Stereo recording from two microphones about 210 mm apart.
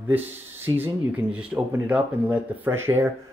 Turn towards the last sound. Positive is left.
turn(degrees=-10)  # may be behind; listen again after turning